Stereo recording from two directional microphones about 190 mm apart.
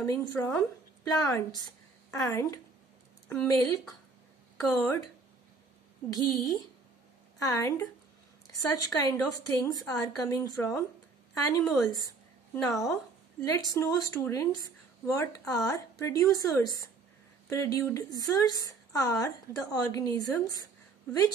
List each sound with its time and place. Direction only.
0.0 s a woman's voice: 20° left (ahead or behind)
6.1 s a woman's voice: 20° left (ahead or behind)